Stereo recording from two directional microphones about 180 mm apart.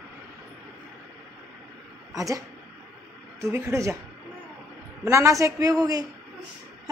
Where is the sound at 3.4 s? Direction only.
15° right (ahead or behind).